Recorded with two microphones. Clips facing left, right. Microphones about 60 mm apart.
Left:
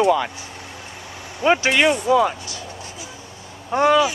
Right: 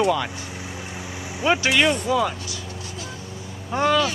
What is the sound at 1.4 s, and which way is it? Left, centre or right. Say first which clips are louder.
Speech: left 3 dB; centre.